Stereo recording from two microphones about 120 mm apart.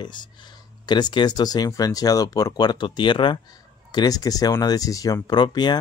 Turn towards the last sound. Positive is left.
turn(degrees=35)  # may be behind; listen again after turning